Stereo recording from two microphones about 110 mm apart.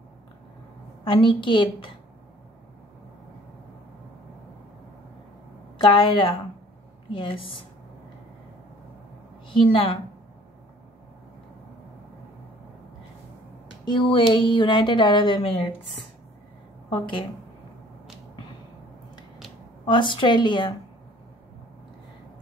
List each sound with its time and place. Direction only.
1.0 s a woman's voice: 50° left (ahead or behind)
5.8 s a woman's voice: 50° left (ahead or behind)
9.5 s a woman's voice: 50° left (ahead or behind)
13.8 s a woman's voice: 50° left (ahead or behind)
16.9 s a woman's voice: 50° left (ahead or behind)
19.9 s a woman's voice: 45° left (ahead or behind)